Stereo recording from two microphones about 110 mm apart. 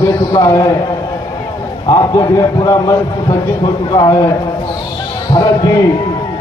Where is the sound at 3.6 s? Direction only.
45° left (ahead or behind).